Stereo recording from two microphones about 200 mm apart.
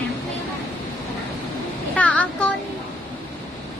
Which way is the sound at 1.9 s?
5° left (ahead or behind).